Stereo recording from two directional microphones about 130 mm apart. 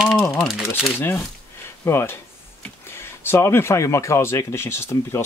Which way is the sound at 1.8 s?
20° left (ahead or behind).